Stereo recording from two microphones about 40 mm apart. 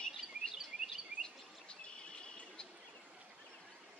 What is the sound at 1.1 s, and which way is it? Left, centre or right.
Bird vocalization, right.